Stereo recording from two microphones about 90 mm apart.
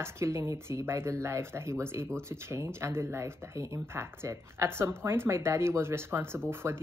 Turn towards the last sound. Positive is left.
turn(degrees=-30)  # may be behind; listen again after turning